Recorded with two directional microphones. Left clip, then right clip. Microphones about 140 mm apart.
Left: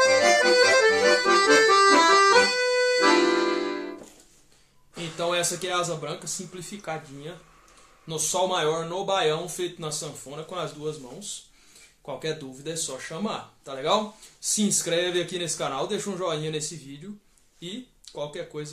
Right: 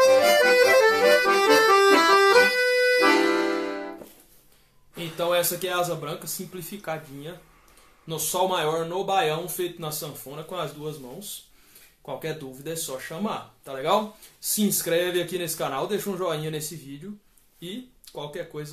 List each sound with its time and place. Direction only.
0.0 s accordion: centre (ahead or behind)
0.8 s accordion: 15° left (ahead or behind)
1.5 s accordion: 5° right (ahead or behind)
5.1 s speech: 15° right (ahead or behind)
12.2 s speech: 10° right (ahead or behind)